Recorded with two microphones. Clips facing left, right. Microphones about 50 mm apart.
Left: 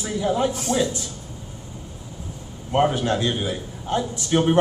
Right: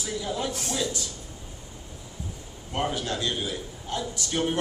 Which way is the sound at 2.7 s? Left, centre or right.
Left.